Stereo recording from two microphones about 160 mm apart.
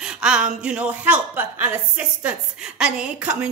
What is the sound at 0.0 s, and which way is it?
A woman's voice, 5° right (ahead or behind).